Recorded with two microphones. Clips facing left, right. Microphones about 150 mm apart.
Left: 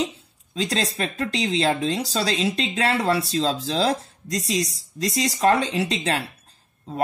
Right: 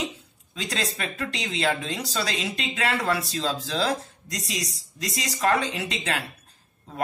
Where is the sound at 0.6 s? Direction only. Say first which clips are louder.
Left 5 dB; 30° left (ahead or behind).